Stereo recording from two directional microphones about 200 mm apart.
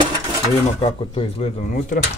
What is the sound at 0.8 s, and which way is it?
Speech, 30° left (ahead or behind).